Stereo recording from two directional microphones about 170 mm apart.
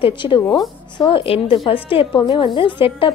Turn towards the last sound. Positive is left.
turn(degrees=30)  # may be behind; listen again after turning